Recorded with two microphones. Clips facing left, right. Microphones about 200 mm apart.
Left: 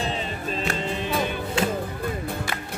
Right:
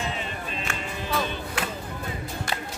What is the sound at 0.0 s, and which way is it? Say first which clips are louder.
Music: left 3 dB; 35° left (ahead or behind).